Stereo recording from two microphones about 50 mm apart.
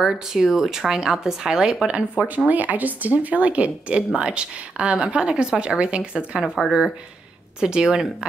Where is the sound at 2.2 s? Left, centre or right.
Right.